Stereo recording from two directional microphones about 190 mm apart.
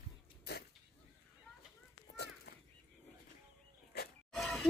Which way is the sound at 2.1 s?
60° left (ahead or behind).